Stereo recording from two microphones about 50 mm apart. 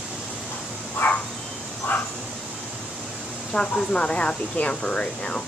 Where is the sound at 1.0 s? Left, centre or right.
Left.